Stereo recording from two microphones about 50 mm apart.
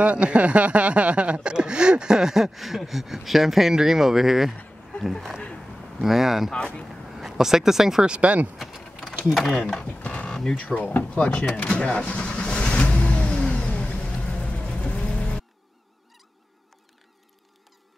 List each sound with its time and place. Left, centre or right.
0.0 s speech: right; by 6.5 s centre
6.5 s speech: centre
7.2 s speech: centre
8.1 s speech: right
8.5 s a sound: centre
9.2 s speech: centre
10.6 s speech: left
11.1 s vehicle: left